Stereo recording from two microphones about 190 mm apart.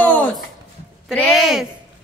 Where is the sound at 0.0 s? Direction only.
10° left (ahead or behind).